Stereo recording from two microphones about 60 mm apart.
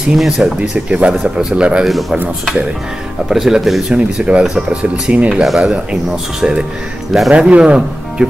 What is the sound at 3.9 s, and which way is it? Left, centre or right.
Speech, centre.